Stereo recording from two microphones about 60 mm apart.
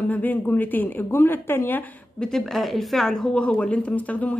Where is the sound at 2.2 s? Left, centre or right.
Centre.